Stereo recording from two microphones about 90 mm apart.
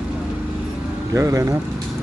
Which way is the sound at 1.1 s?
35° right (ahead or behind).